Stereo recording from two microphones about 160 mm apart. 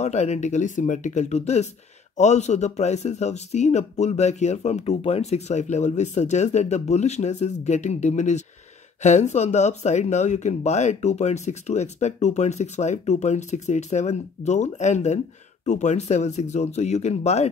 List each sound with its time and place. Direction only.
0.0 s speech: 45° left (ahead or behind)